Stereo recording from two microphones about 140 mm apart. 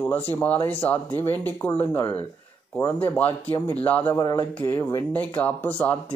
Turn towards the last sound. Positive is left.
turn(degrees=15)  # may be behind; listen again after turning